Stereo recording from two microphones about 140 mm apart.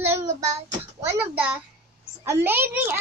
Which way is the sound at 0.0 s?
20° right (ahead or behind).